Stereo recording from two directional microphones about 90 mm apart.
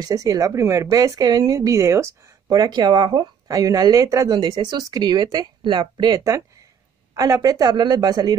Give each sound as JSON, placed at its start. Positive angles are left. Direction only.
{"t": 0.0, "sound": "speech", "side_deg": -40}
{"t": 3.4, "sound": "speech", "side_deg": -40}
{"t": 4.4, "sound": "speech", "side_deg": -60}
{"t": 7.2, "sound": "speech", "side_deg": -40}